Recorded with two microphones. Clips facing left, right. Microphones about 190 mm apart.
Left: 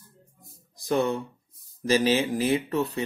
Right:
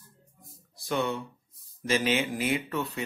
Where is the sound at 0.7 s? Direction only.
40° left (ahead or behind).